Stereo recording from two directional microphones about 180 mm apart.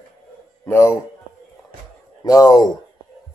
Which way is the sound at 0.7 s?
15° left (ahead or behind).